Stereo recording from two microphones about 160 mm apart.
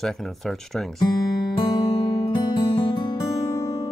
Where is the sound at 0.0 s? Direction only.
Centre (ahead or behind).